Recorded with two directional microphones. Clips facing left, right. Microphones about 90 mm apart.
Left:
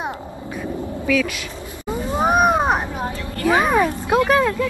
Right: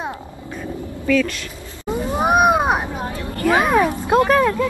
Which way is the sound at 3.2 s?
30° right (ahead or behind).